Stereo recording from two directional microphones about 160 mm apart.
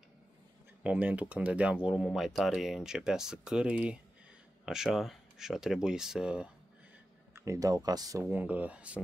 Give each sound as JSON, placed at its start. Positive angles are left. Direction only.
{"t": 0.8, "sound": "speech", "side_deg": -10}
{"t": 7.3, "sound": "speech", "side_deg": -20}
{"t": 8.3, "sound": "speech", "side_deg": -10}